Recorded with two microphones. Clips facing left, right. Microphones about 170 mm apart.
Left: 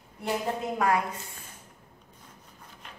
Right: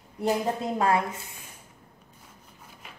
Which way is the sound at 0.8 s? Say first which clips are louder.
Right 1 dB; 25° right (ahead or behind).